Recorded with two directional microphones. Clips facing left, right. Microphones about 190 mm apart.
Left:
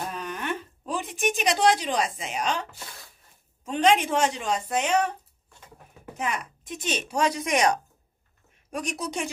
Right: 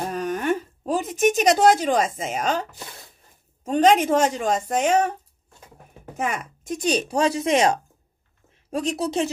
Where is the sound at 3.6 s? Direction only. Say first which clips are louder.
Right 5 dB; 40° right (ahead or behind).